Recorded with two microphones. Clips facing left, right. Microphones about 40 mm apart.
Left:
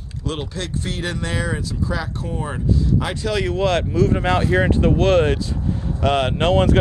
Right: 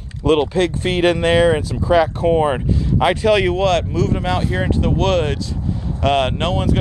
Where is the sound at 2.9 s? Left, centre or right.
Right.